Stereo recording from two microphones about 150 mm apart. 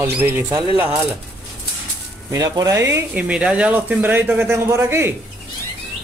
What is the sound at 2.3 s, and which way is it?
Speech, 20° right (ahead or behind).